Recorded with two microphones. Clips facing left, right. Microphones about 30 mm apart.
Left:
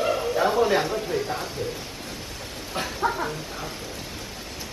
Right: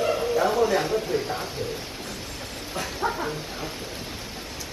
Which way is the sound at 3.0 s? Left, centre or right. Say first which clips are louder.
Left 2 dB; centre.